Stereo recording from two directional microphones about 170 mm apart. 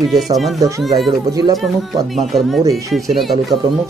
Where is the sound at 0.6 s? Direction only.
20° right (ahead or behind).